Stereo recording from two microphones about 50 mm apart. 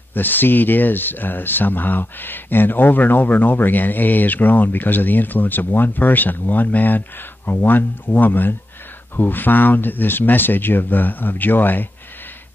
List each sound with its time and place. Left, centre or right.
0.1 s speech: left